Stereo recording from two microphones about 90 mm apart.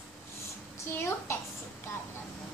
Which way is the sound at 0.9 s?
30° left (ahead or behind).